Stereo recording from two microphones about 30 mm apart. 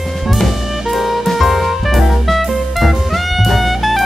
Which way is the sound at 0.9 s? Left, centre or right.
Centre.